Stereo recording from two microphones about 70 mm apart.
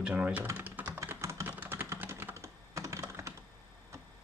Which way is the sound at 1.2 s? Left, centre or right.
Right.